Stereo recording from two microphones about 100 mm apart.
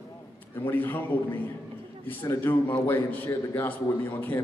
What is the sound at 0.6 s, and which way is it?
Speech, 20° left (ahead or behind).